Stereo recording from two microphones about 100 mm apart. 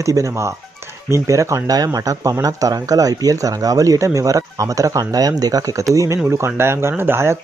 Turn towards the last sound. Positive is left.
turn(degrees=-25)  # may be behind; listen again after turning